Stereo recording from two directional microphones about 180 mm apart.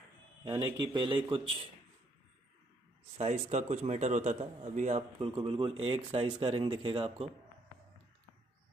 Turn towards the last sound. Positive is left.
turn(degrees=-30)  # may be behind; listen again after turning